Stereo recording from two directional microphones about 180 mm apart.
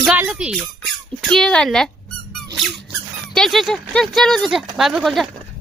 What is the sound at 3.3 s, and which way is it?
Speech, centre (ahead or behind).